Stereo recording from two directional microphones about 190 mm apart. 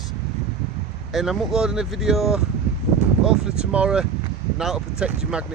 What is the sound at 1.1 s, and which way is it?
Speech, 5° right (ahead or behind).